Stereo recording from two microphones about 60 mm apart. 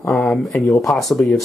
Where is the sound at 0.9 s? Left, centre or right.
Centre.